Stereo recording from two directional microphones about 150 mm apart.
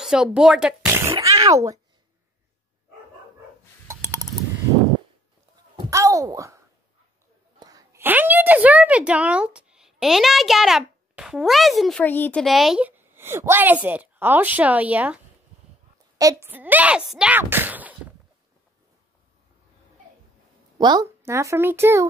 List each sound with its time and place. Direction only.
0.0 s speech: 5° right (ahead or behind)
1.2 s speech: 20° right (ahead or behind)
3.8 s a sound: 20° right (ahead or behind)
5.9 s a sound: 20° right (ahead or behind)
7.5 s a woman's voice: 25° right (ahead or behind); by 12.0 s centre (ahead or behind)
12.0 s a woman's voice: 10° left (ahead or behind); by 15.1 s 10° right (ahead or behind)
16.2 s speech: 20° right (ahead or behind)
20.7 s speech: 25° right (ahead or behind)